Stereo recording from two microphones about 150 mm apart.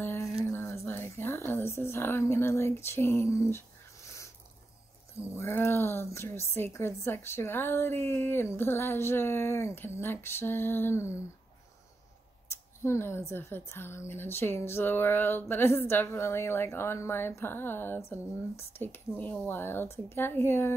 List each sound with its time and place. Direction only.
0.0 s a sound: 15° left (ahead or behind)
5.3 s a woman's voice: 15° left (ahead or behind)
12.4 s a woman's voice: 20° left (ahead or behind)